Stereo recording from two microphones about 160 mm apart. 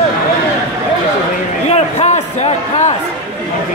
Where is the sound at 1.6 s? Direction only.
45° left (ahead or behind).